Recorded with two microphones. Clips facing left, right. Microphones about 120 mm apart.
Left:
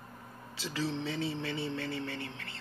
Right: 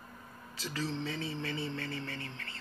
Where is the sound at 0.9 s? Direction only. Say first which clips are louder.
Left 3 dB; 20° left (ahead or behind).